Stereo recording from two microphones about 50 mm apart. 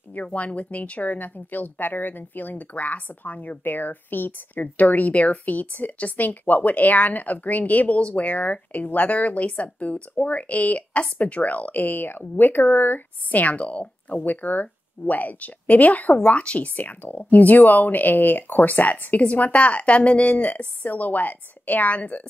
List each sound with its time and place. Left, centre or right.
0.1 s speech: left